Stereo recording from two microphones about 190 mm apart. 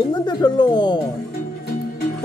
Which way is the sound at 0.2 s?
20° left (ahead or behind).